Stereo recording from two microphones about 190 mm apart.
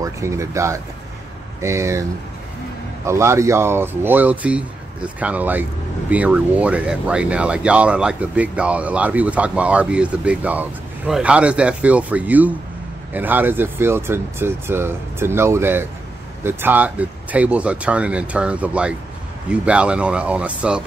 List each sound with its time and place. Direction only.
0.0 s speech: 15° right (ahead or behind)
3.1 s speech: 15° right (ahead or behind)